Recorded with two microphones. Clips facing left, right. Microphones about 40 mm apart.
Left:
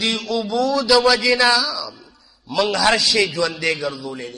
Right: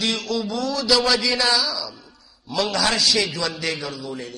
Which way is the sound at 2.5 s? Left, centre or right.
Centre.